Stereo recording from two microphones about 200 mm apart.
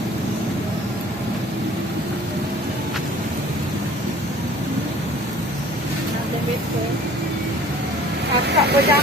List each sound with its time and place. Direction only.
8.5 s vehicle: 55° right (ahead or behind)